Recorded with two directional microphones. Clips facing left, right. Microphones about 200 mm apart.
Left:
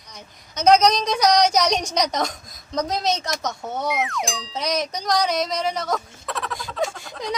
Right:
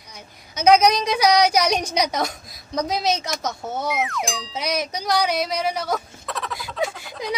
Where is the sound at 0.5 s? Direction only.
5° right (ahead or behind).